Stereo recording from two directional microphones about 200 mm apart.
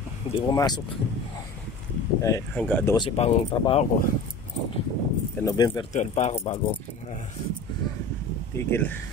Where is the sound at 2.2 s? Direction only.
15° left (ahead or behind).